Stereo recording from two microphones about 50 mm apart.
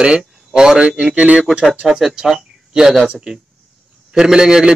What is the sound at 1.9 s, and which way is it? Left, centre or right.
A man's voice, centre.